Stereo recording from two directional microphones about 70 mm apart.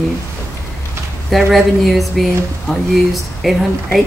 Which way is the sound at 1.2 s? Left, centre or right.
Centre.